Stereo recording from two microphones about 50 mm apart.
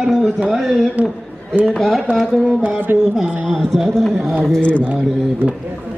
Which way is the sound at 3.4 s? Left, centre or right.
Centre.